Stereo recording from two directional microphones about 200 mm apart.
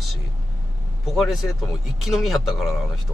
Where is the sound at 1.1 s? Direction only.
Centre (ahead or behind).